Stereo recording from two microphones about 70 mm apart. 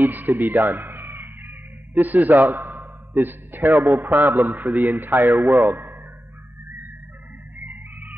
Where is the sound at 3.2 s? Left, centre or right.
Right.